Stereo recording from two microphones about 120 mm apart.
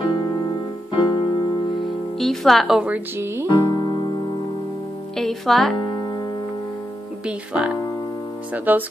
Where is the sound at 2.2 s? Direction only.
5° left (ahead or behind); by 3.5 s 20° right (ahead or behind).